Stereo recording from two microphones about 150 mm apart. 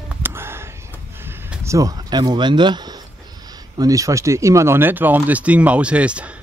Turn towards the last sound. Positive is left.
turn(degrees=-10)  # may be behind; listen again after turning